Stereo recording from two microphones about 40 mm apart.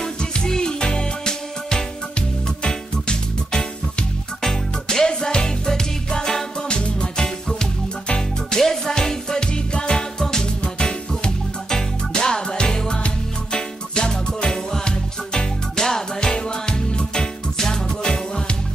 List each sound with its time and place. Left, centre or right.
0.0 s music: centre
5.0 s music: centre